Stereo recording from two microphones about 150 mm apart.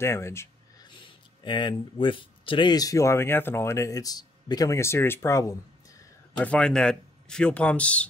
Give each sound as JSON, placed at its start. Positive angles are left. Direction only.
{"t": 0.0, "sound": "speech", "side_deg": 15}
{"t": 0.8, "sound": "speech", "side_deg": 35}
{"t": 6.3, "sound": "speech", "side_deg": 10}